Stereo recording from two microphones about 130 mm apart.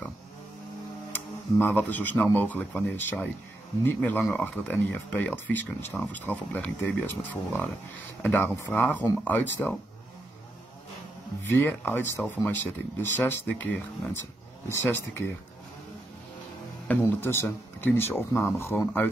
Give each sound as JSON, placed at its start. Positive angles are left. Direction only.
{"t": 1.1, "sound": "speech", "side_deg": 15}
{"t": 11.4, "sound": "speech", "side_deg": 15}
{"t": 14.7, "sound": "speech", "side_deg": 20}
{"t": 16.8, "sound": "speech", "side_deg": 15}